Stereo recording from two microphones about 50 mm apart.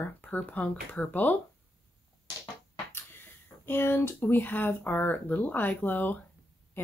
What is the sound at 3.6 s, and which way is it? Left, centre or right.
Speech, left.